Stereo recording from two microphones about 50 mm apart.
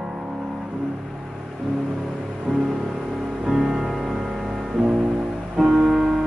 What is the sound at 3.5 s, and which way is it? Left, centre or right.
Music, centre.